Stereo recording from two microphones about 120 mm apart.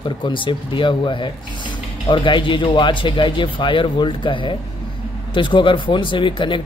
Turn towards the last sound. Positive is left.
turn(degrees=45)  # may be behind; listen again after turning